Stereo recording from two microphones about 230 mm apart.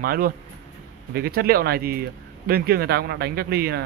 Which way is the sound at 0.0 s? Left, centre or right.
Right.